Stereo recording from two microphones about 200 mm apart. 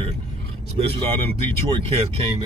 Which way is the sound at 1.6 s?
25° right (ahead or behind).